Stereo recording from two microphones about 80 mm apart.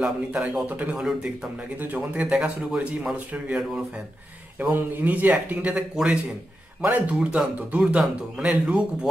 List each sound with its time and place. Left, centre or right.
0.0 s speech: centre
2.1 s speech: centre
4.6 s a man's voice: right